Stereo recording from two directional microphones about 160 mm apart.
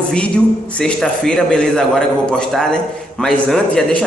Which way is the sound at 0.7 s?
5° left (ahead or behind).